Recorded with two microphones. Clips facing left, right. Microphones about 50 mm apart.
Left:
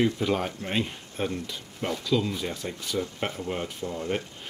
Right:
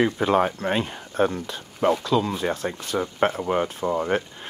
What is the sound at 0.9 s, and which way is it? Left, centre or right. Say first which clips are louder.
Speech: right 8 dB; right.